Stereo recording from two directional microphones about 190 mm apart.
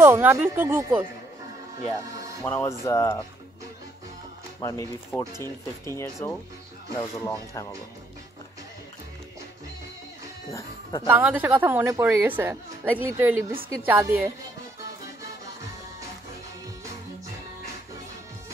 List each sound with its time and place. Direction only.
0.0 s a woman's voice: 10° right (ahead or behind)
2.4 s speech: 15° left (ahead or behind)
4.6 s speech: 15° left (ahead or behind)
11.1 s a woman's voice: 10° right (ahead or behind)